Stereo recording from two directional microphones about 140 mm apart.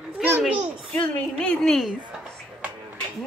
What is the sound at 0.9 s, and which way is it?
A woman's voice, 10° left (ahead or behind).